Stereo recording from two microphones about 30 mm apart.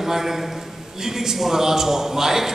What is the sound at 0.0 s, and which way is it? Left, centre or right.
A man's voice, centre.